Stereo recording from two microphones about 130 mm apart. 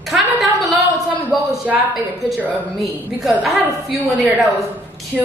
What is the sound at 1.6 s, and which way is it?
A man's voice, 5° right (ahead or behind).